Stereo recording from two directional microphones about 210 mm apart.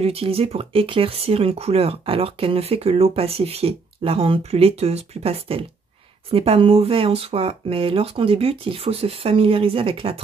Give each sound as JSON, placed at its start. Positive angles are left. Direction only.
{"t": 0.0, "sound": "speech", "side_deg": -30}